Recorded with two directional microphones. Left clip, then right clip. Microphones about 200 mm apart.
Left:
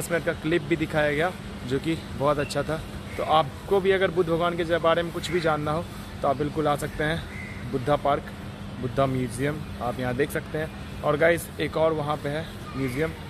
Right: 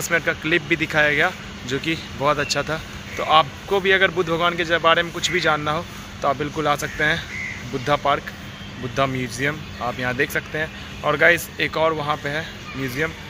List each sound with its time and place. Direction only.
0.1 s a man's voice: 5° right (ahead or behind)